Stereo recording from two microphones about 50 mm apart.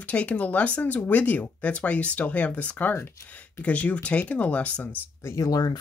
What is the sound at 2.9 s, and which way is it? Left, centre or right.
Speech, left.